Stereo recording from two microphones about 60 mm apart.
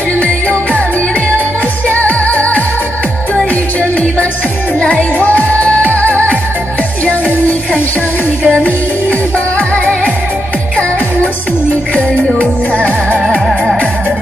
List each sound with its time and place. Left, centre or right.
0.2 s music: left
1.9 s music: left
5.2 s music: left
12.4 s music: left
13.3 s music: centre